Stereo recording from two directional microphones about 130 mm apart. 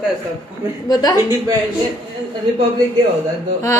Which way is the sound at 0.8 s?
30° left (ahead or behind).